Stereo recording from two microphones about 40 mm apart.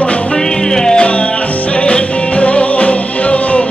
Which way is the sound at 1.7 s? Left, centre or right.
Left.